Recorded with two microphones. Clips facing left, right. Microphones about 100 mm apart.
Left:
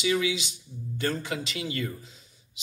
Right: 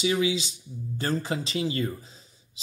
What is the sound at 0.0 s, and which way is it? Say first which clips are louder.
Speech: right 1 dB; 30° right (ahead or behind).